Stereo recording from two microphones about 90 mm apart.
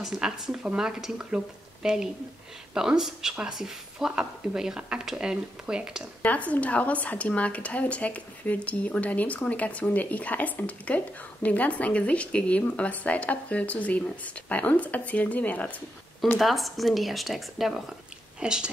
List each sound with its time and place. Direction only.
0.0 s speech: 5° right (ahead or behind)
6.2 s a woman's voice: 15° left (ahead or behind)
16.3 s speech: centre (ahead or behind)